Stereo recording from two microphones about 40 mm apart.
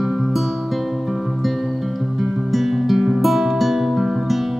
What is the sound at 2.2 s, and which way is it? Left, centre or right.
Music, centre.